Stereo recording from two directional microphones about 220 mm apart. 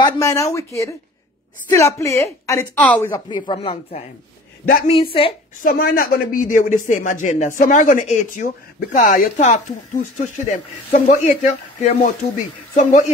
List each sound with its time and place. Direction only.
0.0 s a woman's voice: 15° left (ahead or behind)
3.3 s speech: 20° left (ahead or behind)
5.6 s speech: 40° left (ahead or behind)